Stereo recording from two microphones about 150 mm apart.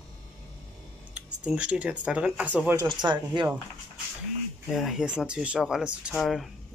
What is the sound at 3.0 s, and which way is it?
Speech, 30° right (ahead or behind).